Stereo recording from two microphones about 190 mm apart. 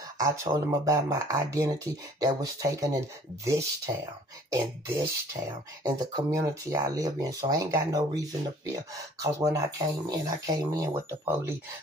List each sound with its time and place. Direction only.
0.2 s speech: 15° right (ahead or behind)